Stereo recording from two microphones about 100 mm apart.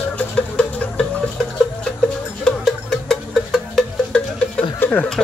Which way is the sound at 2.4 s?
5° left (ahead or behind).